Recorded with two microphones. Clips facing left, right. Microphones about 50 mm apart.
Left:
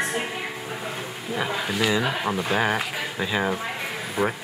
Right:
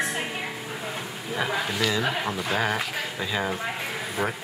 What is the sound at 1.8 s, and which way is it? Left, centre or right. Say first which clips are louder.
Speech: left 4 dB; centre.